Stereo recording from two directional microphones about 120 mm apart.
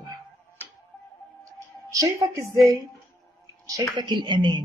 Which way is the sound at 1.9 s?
25° right (ahead or behind).